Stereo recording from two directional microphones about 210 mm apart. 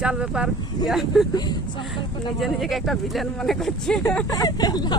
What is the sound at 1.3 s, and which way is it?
Speech, 20° left (ahead or behind).